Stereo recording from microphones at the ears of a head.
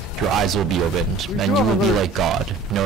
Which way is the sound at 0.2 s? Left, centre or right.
Right.